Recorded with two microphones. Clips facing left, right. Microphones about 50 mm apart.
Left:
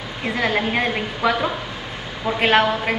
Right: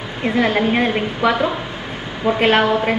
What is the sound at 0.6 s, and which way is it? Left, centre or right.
Speech, centre.